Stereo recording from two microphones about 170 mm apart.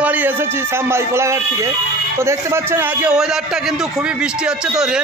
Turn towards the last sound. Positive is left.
turn(degrees=-5)  # may be behind; listen again after turning